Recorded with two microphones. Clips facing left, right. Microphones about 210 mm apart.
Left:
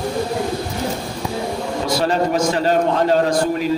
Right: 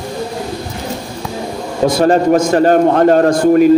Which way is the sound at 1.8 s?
50° right (ahead or behind).